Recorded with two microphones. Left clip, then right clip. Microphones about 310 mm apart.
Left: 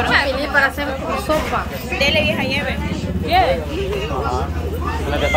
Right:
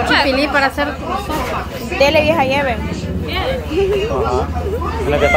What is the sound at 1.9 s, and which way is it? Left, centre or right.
Speech, centre.